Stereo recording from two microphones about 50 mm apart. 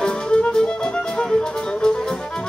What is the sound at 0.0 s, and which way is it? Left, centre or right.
Music, centre.